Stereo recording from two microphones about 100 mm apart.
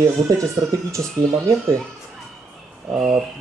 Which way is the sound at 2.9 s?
5° right (ahead or behind).